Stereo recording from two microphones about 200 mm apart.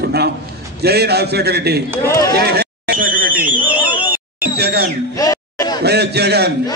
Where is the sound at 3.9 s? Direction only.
10° right (ahead or behind).